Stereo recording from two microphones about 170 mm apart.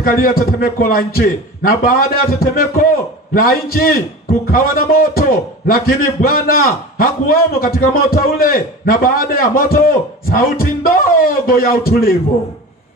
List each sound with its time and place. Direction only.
0.0 s a man's voice: 60° left (ahead or behind)